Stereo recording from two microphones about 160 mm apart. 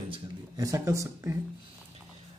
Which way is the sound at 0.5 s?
20° right (ahead or behind).